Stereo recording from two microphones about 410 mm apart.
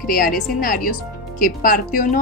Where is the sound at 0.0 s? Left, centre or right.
Left.